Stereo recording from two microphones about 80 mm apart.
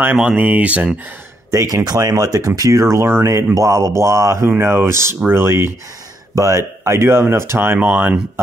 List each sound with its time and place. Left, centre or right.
0.2 s speech: centre
1.5 s speech: right